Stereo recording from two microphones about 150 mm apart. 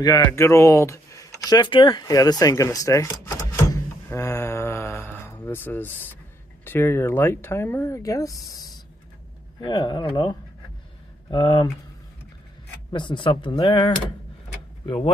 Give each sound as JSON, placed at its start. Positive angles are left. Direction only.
{"t": 0.0, "sound": "a sound", "side_deg": 25}
{"t": 6.6, "sound": "speech", "side_deg": 15}
{"t": 9.6, "sound": "speech", "side_deg": 30}
{"t": 12.9, "sound": "speech", "side_deg": 30}